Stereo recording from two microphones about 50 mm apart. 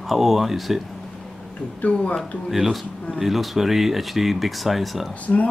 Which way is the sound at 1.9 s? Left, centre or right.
Centre.